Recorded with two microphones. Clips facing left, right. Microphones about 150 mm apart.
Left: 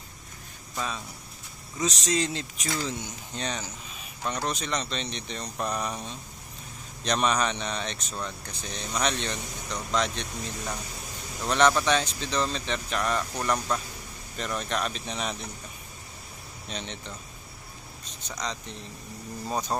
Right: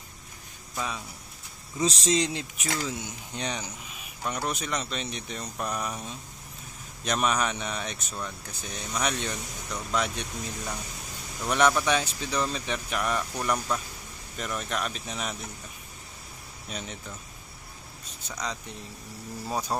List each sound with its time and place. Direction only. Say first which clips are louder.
0.7 s speech: even; 10° right (ahead or behind)
1.8 s speech: right 3 dB; 30° right (ahead or behind)
2.1 s speech: right 1 dB; 15° right (ahead or behind)
11.4 s speech: left 1 dB; 10° right (ahead or behind)
16.6 s speech: left 1 dB; 5° right (ahead or behind)
18.3 s speech: even; 10° right (ahead or behind)